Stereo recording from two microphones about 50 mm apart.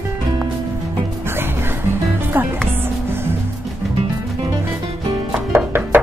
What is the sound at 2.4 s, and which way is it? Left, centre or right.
Music, right.